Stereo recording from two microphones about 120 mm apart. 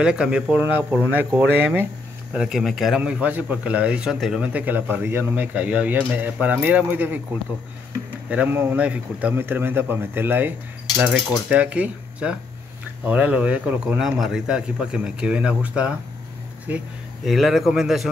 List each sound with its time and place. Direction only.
0.0 s a man's voice: 10° right (ahead or behind)
8.3 s a man's voice: 15° right (ahead or behind)